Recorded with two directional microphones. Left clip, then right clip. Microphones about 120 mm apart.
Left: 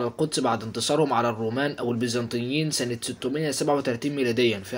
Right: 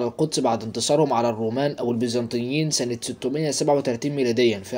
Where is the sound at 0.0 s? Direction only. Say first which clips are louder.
Right 3 dB; 20° right (ahead or behind).